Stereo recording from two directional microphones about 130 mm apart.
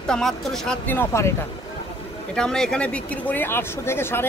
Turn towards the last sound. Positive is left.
turn(degrees=20)  # may be behind; listen again after turning